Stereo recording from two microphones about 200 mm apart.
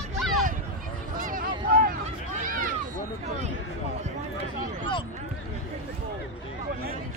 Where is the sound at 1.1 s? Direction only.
45° right (ahead or behind).